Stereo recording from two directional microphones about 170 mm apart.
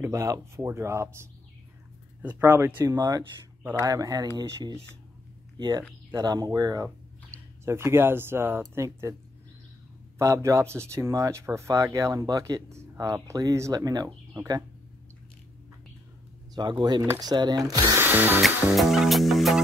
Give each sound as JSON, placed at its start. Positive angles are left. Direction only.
{"t": 0.0, "sound": "speech", "side_deg": -15}
{"t": 10.1, "sound": "speech", "side_deg": -20}
{"t": 16.5, "sound": "speech", "side_deg": -25}
{"t": 18.4, "sound": "music", "side_deg": 0}